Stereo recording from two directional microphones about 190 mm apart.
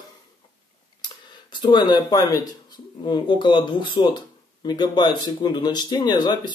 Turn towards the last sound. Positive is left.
turn(degrees=20)  # may be behind; listen again after turning